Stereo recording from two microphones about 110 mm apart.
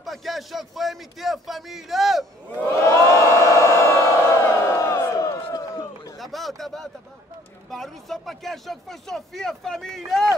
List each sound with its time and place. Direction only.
0.0 s speech: centre (ahead or behind)
2.9 s crowd: 25° left (ahead or behind)
5.5 s run: 35° left (ahead or behind)
6.1 s a sound: centre (ahead or behind)
7.7 s speech: centre (ahead or behind)